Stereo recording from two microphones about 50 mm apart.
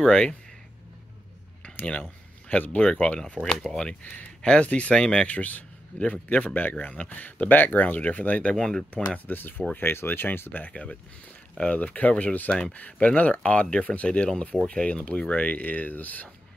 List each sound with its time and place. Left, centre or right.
0.0 s speech: centre
1.6 s a sound: left
2.8 s speech: left
3.4 s speech: centre
4.0 s speech: left
4.4 s speech: left
5.3 s a man's voice: left
8.5 s speech: centre
9.3 s speech: left
10.6 s speech: left